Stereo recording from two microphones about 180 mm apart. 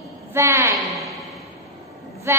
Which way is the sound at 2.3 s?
15° right (ahead or behind).